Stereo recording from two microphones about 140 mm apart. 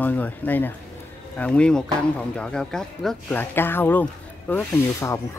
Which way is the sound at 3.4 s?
15° left (ahead or behind).